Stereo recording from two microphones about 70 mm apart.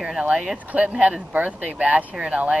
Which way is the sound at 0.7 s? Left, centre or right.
Centre.